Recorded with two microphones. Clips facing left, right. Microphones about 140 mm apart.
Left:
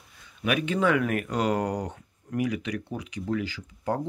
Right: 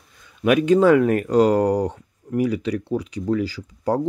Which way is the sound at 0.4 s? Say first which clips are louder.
Right 10 dB; 40° right (ahead or behind).